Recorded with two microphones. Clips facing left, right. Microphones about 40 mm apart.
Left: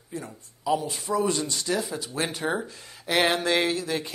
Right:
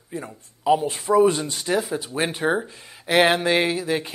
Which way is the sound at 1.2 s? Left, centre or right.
Right.